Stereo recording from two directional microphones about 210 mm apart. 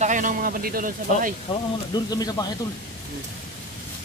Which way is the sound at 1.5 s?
20° left (ahead or behind).